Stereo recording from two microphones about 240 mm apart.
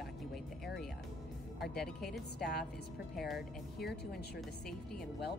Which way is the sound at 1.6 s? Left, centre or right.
Centre.